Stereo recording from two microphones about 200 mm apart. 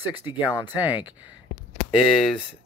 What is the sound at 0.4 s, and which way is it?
Speech, 20° left (ahead or behind).